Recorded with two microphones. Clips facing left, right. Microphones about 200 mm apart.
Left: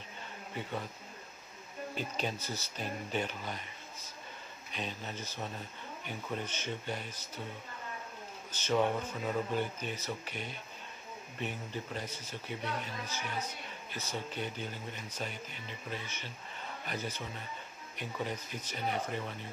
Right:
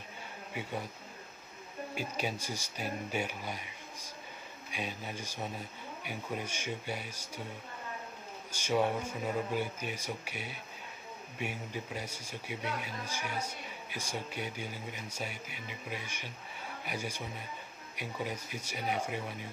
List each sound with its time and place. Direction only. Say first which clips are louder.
0.6 s a man's voice: even; 10° right (ahead or behind)
2.0 s a man's voice: right 1 dB; 10° right (ahead or behind)
8.5 s a man's voice: even; 10° right (ahead or behind)